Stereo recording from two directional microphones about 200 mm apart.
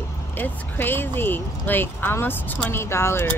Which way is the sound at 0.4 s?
10° left (ahead or behind).